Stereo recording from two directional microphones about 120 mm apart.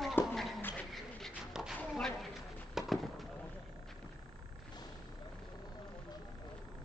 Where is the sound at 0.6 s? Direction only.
15° left (ahead or behind).